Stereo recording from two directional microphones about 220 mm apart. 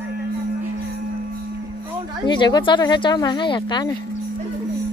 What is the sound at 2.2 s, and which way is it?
A woman's voice, 20° left (ahead or behind).